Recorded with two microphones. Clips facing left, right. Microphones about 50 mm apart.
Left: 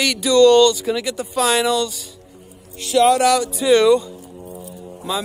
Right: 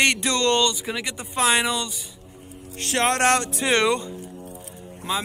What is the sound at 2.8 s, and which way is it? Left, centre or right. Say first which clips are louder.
Speech: left 7 dB; right.